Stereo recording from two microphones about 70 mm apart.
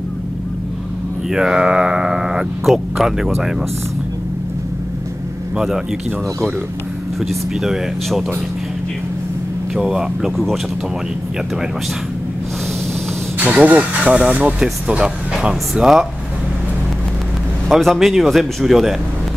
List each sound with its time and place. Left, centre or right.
1.3 s speech: centre
7.2 s speech: centre
9.8 s speech: centre
10.3 s speech: centre
13.4 s speech: right; by 16.1 s centre
17.6 s speech: centre